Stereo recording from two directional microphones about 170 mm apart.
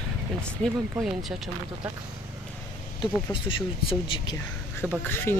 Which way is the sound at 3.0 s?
30° left (ahead or behind).